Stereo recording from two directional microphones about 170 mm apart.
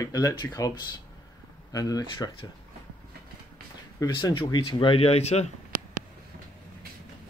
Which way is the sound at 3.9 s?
20° left (ahead or behind).